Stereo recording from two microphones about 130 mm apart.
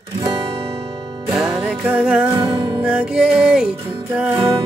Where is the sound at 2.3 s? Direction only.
30° right (ahead or behind).